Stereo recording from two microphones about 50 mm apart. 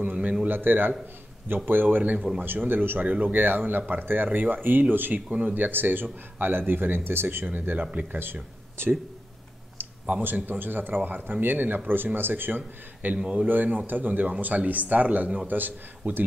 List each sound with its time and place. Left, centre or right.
0.0 s a sound: right
0.5 s speech: right
3.1 s speech: right
7.4 s speech: right
7.8 s speech: right
8.2 s speech: right
10.4 s speech: right
13.2 s speech: centre
13.5 s speech: right